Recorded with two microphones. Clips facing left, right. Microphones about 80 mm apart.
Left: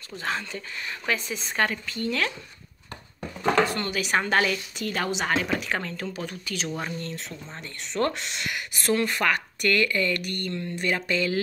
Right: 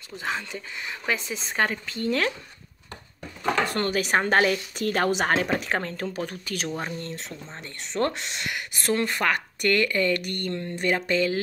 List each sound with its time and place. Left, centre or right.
0.1 s speech: centre; by 2.3 s right
3.6 s a woman's voice: right
6.8 s speech: right
11.0 s speech: right